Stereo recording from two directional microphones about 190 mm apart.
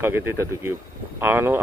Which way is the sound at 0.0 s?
15° right (ahead or behind).